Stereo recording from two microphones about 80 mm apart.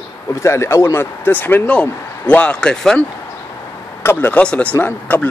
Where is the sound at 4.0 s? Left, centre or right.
Left.